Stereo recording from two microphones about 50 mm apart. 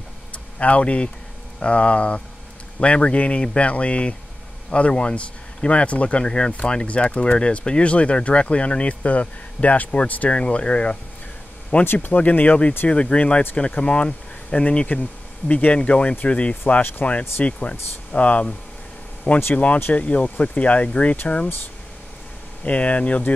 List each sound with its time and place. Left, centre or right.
0.3 s a sound: left
1.6 s speech: left
11.8 s speech: left
12.1 s speech: left
14.9 s speech: left
19.5 s speech: left
22.7 s speech: left